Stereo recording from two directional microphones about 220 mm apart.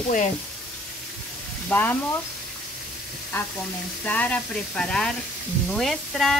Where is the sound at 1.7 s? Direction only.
10° left (ahead or behind).